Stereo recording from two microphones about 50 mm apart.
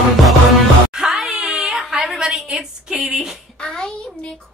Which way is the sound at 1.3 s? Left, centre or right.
Centre.